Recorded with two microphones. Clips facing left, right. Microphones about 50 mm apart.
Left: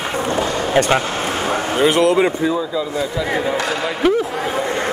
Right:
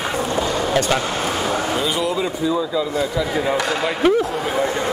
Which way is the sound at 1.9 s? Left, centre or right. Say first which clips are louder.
Left 7 dB; left.